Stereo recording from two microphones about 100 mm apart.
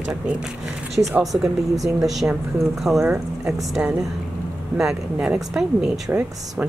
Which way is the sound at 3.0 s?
20° right (ahead or behind).